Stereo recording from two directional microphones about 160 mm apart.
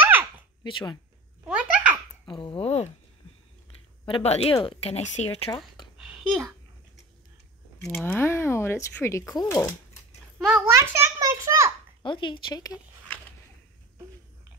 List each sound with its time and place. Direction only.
0.0 s a sound: 10° right (ahead or behind)
0.7 s a woman's voice: 30° left (ahead or behind)
1.5 s a sound: 5° right (ahead or behind)
2.2 s a woman's voice: 30° left (ahead or behind)
4.0 s a woman's voice: 35° left (ahead or behind)
5.9 s a sound: 5° right (ahead or behind)
8.0 s speech: 15° left (ahead or behind)
10.4 s a child's voice: 5° right (ahead or behind)
10.7 s a child's voice: 20° right (ahead or behind)
12.0 s speech: 30° left (ahead or behind)